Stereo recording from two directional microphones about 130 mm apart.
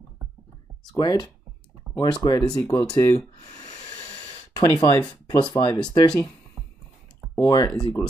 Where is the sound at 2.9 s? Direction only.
25° left (ahead or behind).